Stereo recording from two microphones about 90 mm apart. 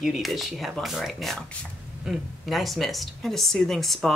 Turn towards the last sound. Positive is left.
turn(degrees=0)  # may be behind; listen again after turning